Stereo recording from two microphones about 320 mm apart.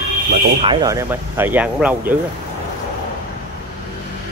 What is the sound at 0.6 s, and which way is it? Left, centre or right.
Speech, centre.